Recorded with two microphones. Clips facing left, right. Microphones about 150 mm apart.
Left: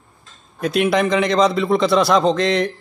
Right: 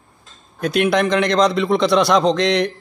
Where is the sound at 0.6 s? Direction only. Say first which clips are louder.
Even; centre (ahead or behind).